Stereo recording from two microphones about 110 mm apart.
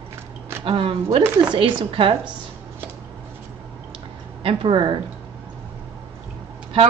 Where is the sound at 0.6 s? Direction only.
55° right (ahead or behind).